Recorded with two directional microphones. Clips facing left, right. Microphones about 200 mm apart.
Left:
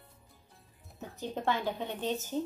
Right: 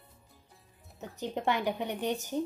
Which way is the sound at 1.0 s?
15° right (ahead or behind).